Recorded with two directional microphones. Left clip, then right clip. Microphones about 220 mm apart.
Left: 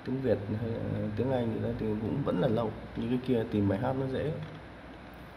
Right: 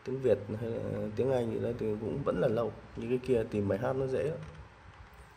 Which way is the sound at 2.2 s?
15° right (ahead or behind).